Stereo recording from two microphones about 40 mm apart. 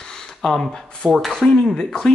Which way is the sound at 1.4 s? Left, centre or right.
Centre.